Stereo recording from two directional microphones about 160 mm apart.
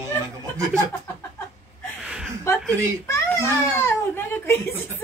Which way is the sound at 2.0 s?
5° right (ahead or behind).